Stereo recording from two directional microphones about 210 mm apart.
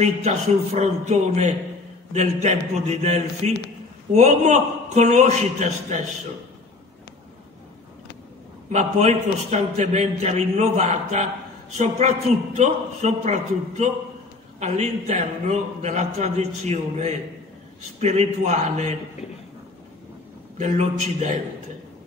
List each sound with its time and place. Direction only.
0.7 s a man's voice: 30° right (ahead or behind)
8.7 s a man's voice: 30° right (ahead or behind)
20.5 s a man's voice: 35° right (ahead or behind)